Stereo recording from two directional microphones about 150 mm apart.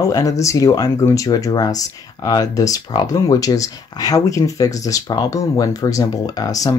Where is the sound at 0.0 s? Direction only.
25° left (ahead or behind).